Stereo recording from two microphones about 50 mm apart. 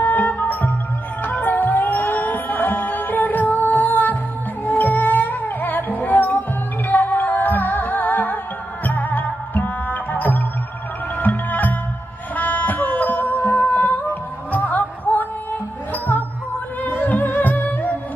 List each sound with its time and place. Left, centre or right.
0.0 s music: left